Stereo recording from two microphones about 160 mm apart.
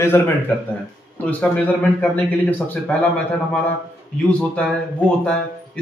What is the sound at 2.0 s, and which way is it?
A man's voice, 10° left (ahead or behind).